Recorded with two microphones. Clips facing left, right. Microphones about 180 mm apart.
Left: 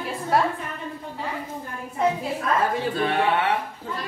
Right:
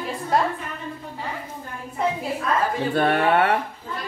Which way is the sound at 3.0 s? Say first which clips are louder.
Right 5 dB; 60° right (ahead or behind).